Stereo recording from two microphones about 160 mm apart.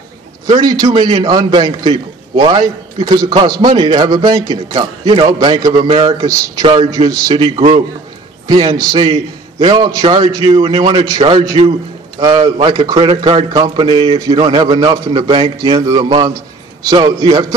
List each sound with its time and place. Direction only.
0.5 s a man's voice: 25° right (ahead or behind)
9.1 s a man's voice: 35° right (ahead or behind)
10.5 s a man's voice: 40° right (ahead or behind)
14.2 s a man's voice: 25° right (ahead or behind)